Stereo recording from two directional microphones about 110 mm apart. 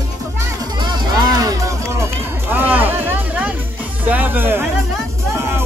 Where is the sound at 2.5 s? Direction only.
15° right (ahead or behind).